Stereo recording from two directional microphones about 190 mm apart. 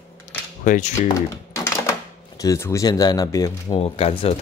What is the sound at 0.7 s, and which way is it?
Speech, 40° left (ahead or behind).